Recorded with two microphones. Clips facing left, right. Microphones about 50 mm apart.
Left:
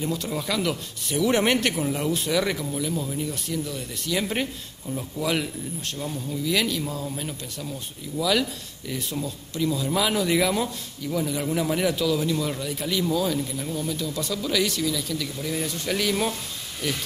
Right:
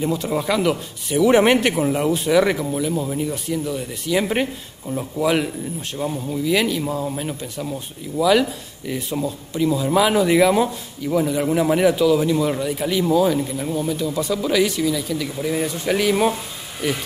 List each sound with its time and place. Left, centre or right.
0.0 s a man's voice: centre